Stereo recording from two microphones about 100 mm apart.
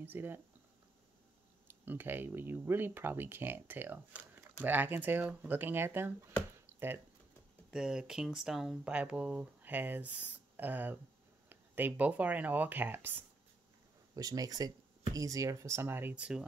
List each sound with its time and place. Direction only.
0.0 s speech: 20° right (ahead or behind)
1.7 s speech: 20° right (ahead or behind)
7.7 s speech: 5° right (ahead or behind)
14.1 s speech: 40° right (ahead or behind); by 16.4 s 10° right (ahead or behind)